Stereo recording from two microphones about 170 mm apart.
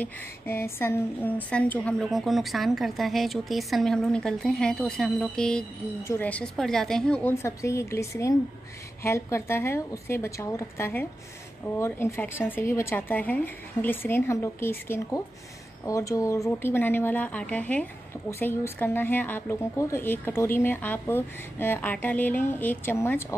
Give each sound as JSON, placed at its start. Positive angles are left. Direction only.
{"t": 0.0, "sound": "a woman's voice", "side_deg": 15}
{"t": 7.4, "sound": "speech", "side_deg": 15}